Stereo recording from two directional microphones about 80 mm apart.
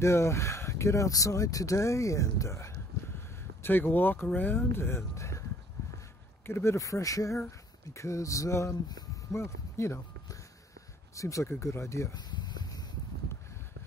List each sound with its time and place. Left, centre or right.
0.0 s speech: left
3.6 s speech: left
6.4 s speech: left
8.8 s a sound: left
9.3 s speech: left
12.2 s a sound: left